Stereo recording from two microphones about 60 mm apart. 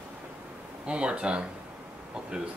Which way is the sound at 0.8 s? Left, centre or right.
Centre.